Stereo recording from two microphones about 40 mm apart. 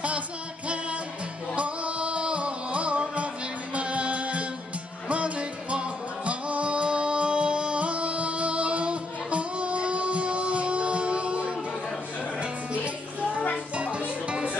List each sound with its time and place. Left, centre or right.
1.5 s music: right
13.2 s music: left
13.7 s music: right